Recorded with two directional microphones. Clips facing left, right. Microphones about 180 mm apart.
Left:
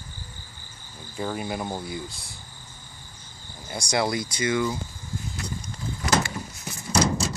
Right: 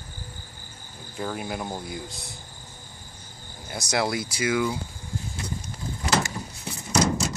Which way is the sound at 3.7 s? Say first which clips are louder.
Left 1 dB; centre (ahead or behind).